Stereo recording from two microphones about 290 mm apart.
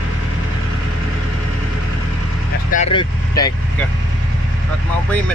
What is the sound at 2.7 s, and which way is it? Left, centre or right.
Speech, left.